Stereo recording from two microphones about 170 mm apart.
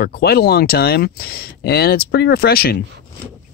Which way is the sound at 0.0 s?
65° left (ahead or behind).